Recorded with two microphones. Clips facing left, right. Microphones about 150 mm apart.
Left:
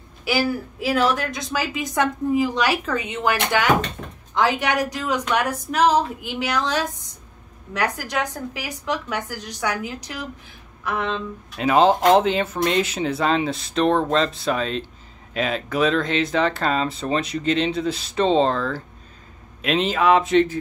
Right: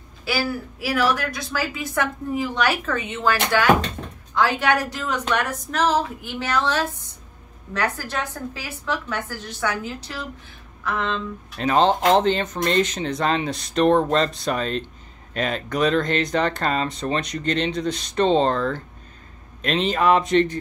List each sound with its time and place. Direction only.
0.2 s a woman's voice: 20° left (ahead or behind); by 20.5 s centre (ahead or behind)